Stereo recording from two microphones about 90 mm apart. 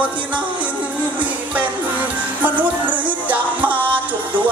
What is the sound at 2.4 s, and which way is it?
Music, 15° right (ahead or behind).